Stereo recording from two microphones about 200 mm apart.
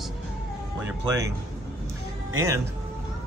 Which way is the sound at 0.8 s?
15° right (ahead or behind).